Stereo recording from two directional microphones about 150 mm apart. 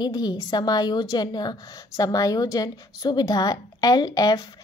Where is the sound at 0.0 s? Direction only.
25° left (ahead or behind).